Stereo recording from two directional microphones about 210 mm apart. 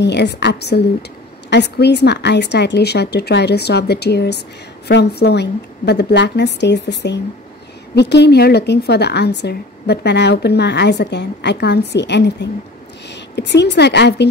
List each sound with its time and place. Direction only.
0.0 s a woman's voice: 55° left (ahead or behind)